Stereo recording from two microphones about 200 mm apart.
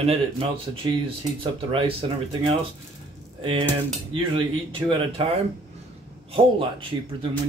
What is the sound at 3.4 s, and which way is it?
Cutlery, 25° right (ahead or behind).